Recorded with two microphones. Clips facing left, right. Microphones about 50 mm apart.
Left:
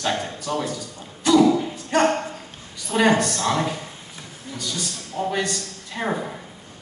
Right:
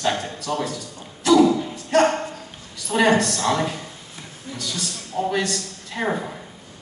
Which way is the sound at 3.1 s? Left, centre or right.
Centre.